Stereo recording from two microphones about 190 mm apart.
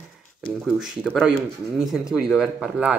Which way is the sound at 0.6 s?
5° right (ahead or behind).